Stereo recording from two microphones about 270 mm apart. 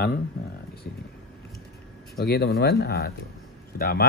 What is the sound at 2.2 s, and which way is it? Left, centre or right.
Speech, left.